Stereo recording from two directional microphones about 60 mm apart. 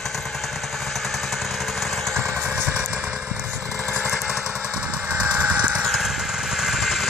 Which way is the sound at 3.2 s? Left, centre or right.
Left.